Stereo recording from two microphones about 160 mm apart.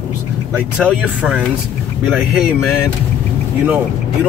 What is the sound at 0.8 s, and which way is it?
Speech, 5° left (ahead or behind).